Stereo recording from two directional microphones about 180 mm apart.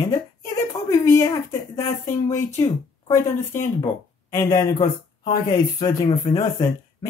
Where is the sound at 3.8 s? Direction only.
15° left (ahead or behind).